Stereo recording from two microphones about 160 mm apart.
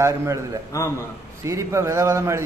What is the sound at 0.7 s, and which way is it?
Speech, 20° left (ahead or behind).